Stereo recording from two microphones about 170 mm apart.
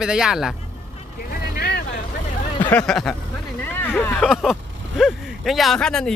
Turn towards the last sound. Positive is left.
turn(degrees=5)  # may be behind; listen again after turning